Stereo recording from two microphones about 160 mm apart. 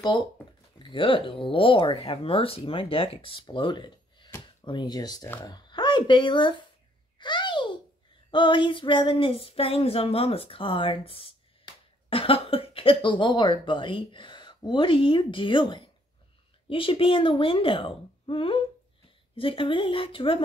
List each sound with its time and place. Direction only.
0.7 s speech: 30° left (ahead or behind)
7.2 s a sound: 30° left (ahead or behind)
16.6 s speech: 35° left (ahead or behind)